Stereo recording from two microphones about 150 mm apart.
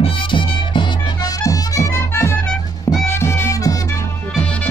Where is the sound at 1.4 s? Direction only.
20° left (ahead or behind).